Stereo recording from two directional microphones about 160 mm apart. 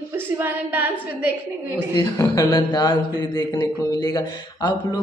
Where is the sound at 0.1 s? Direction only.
10° right (ahead or behind).